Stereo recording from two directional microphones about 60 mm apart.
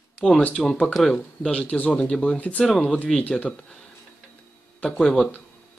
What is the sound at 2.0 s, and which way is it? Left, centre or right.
Speech, centre.